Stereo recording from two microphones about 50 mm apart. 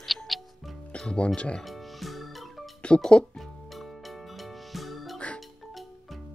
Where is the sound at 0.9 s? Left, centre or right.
Centre.